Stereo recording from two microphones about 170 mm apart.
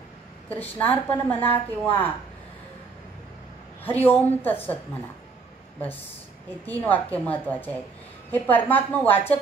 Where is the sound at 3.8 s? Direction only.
10° left (ahead or behind).